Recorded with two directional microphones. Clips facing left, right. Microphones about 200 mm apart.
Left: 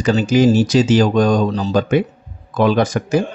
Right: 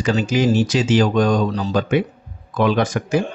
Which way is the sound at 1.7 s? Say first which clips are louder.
Left 3 dB; 40° left (ahead or behind).